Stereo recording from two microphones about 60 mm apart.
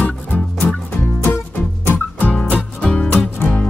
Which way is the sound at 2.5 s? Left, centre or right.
Left.